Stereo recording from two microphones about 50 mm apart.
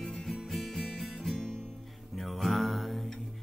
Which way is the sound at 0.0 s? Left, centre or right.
Centre.